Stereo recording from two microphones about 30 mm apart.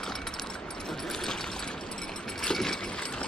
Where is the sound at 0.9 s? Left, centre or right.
Centre.